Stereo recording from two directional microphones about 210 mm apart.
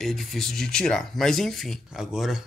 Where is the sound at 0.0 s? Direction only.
Centre (ahead or behind).